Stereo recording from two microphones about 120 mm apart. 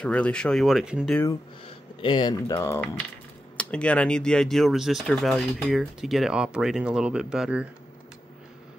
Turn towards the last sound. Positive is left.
turn(degrees=-5)  # may be behind; listen again after turning